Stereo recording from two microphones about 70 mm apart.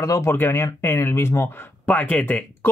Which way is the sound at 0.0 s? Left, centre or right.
Left.